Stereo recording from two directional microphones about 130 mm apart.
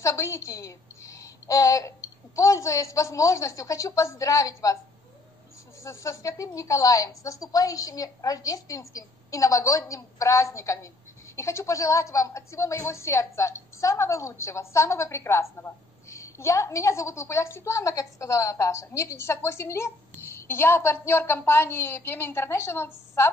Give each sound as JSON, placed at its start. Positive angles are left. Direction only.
{"t": 0.0, "sound": "a woman's voice", "side_deg": 25}
{"t": 5.9, "sound": "a woman's voice", "side_deg": 25}